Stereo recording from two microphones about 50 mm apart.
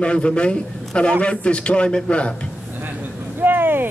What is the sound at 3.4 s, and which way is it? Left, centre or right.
Vehicle, right.